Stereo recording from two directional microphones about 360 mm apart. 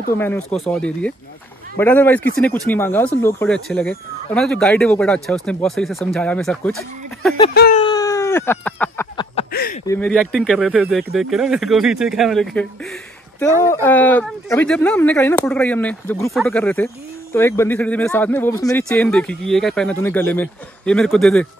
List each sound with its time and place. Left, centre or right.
0.2 s speech: centre
7.5 s speech: left
7.8 s a sound: centre
9.8 s speech: centre